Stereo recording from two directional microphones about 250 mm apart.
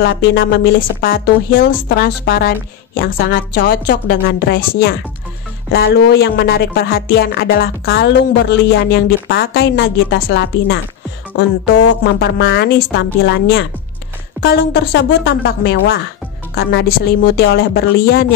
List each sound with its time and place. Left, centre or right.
0.0 s speech: left